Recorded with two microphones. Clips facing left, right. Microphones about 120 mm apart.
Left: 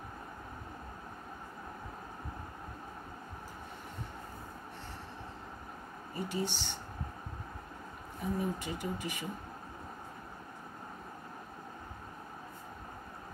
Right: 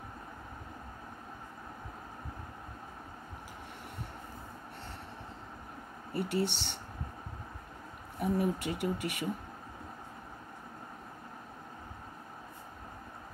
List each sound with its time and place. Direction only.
6.1 s speech: 65° right (ahead or behind)
8.2 s speech: 65° right (ahead or behind)